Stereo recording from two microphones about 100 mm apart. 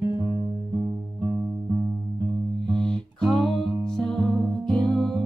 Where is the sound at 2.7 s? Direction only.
10° left (ahead or behind).